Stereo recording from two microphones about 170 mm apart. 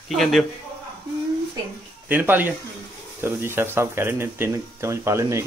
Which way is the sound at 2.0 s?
10° right (ahead or behind).